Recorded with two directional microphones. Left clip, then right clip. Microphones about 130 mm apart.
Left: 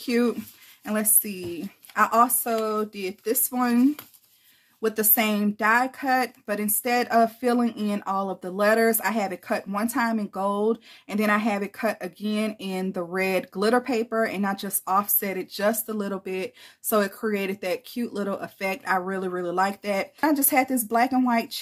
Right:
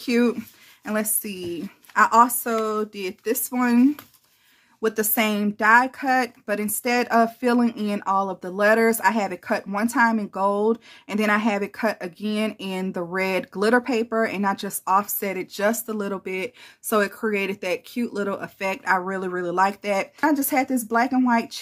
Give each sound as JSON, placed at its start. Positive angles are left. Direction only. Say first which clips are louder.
{"t": 0.0, "sound": "a woman's voice", "louder": "right 2 dB", "side_deg": -30}